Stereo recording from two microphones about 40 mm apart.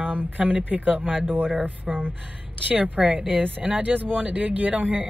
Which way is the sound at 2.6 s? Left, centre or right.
Right.